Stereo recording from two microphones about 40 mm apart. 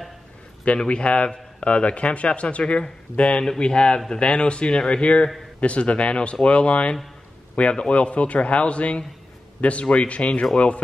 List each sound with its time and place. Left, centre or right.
0.8 s speech: left